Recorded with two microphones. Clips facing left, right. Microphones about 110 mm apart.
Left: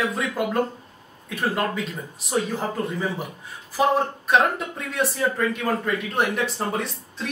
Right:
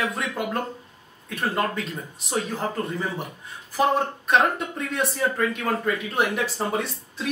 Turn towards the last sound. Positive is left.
turn(degrees=0)  # may be behind; listen again after turning